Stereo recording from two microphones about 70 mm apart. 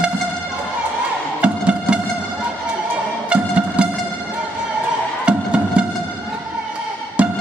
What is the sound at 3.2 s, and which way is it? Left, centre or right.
Music, centre.